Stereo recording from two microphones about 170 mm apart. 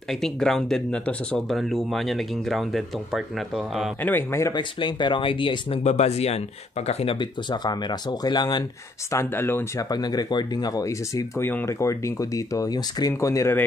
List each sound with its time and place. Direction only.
0.1 s speech: centre (ahead or behind)
4.0 s speech: 10° left (ahead or behind)
9.1 s speech: 15° left (ahead or behind)